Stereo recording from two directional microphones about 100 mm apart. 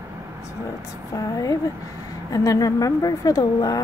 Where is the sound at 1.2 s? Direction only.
35° left (ahead or behind).